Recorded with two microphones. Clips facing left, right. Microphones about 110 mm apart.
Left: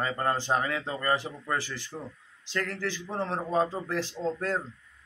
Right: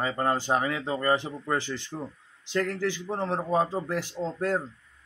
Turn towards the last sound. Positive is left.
turn(degrees=-15)  # may be behind; listen again after turning